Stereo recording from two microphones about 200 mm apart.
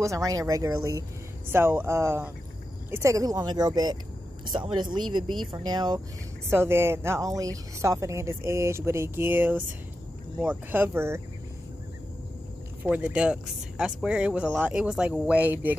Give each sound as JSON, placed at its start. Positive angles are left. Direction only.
{"t": 0.0, "sound": "speech", "side_deg": -15}
{"t": 12.8, "sound": "speech", "side_deg": -5}